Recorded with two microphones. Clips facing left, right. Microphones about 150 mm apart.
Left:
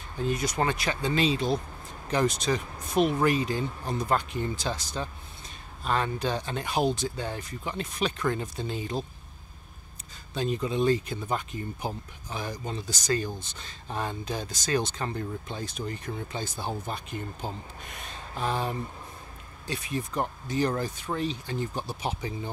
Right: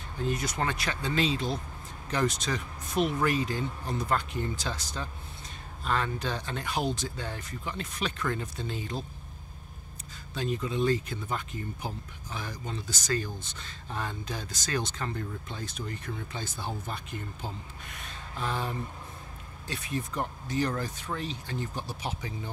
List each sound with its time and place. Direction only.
0.3 s speech: 15° left (ahead or behind)
10.3 s speech: 25° left (ahead or behind)